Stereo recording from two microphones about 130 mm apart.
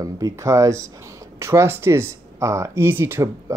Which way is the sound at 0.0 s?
25° right (ahead or behind).